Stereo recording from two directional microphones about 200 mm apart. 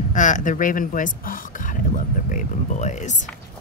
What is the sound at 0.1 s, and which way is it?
A woman's voice, 40° left (ahead or behind).